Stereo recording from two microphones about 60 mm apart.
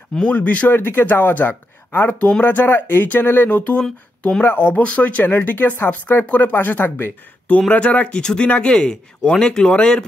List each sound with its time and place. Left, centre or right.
0.3 s speech: left
0.7 s speech: left
2.0 s speech: left
2.4 s speech: left
7.7 s a man's voice: left